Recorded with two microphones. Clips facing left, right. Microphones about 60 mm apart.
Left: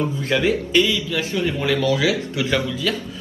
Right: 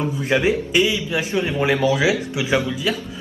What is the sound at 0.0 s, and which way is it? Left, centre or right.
A man's voice, right.